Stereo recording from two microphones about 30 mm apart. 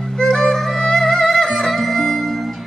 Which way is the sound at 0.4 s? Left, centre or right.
Centre.